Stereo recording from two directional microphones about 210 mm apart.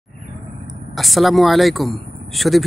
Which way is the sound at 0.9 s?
Centre (ahead or behind).